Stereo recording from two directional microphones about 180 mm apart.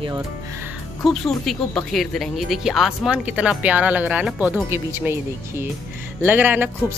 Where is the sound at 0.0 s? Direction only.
25° right (ahead or behind).